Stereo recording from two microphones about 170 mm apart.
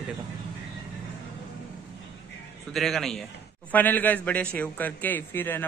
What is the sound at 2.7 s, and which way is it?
A man's voice, centre (ahead or behind).